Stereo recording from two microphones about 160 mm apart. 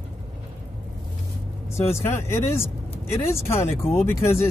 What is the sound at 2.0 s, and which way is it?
Speech, 15° left (ahead or behind).